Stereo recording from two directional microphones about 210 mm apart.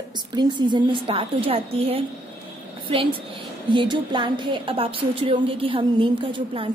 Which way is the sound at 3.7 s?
20° right (ahead or behind).